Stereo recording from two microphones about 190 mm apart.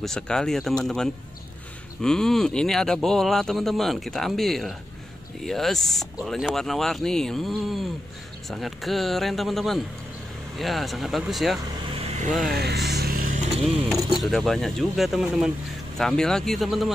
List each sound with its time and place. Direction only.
0.0 s speech: 5° left (ahead or behind)
12.4 s vehicle: 55° right (ahead or behind)
13.8 s speech: centre (ahead or behind)